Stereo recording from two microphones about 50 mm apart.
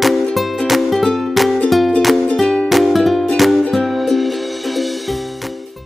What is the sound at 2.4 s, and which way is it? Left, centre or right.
Music, centre.